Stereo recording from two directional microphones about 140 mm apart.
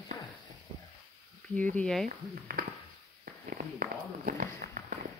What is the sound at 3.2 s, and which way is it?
Walk, 90° right.